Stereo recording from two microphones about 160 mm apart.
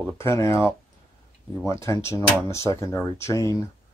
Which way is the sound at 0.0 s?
15° left (ahead or behind).